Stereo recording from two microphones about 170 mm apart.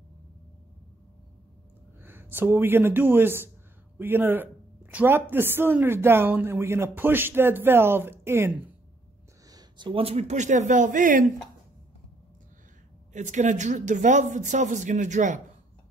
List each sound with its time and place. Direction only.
2.0 s speech: 10° right (ahead or behind)
9.5 s speech: 25° right (ahead or behind); by 11.3 s 50° right (ahead or behind)
13.1 s speech: 45° right (ahead or behind)